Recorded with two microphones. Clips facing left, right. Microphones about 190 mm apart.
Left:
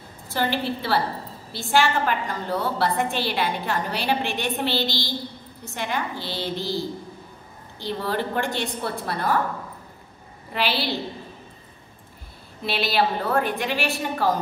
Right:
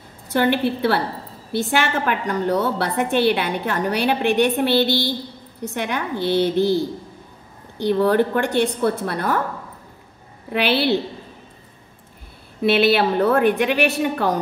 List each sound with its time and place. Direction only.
0.3 s a woman's voice: 60° right (ahead or behind)
7.8 s a woman's voice: 55° right (ahead or behind)
10.5 s a woman's voice: 60° right (ahead or behind)
12.6 s a woman's voice: 60° right (ahead or behind)